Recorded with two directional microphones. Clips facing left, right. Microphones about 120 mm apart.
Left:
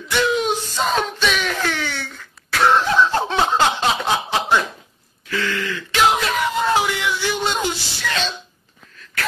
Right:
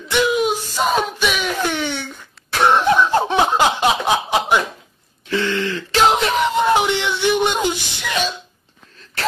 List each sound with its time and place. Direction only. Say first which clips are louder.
0.1 s a sound: right 2 dB; 10° right (ahead or behind)
5.3 s throat clearing: right 4 dB; 25° right (ahead or behind)
5.6 s wail: right 1 dB; 35° right (ahead or behind); by 8.4 s 15° right (ahead or behind)